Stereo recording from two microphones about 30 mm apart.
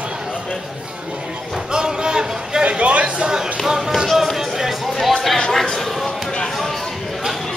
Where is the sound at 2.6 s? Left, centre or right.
Right.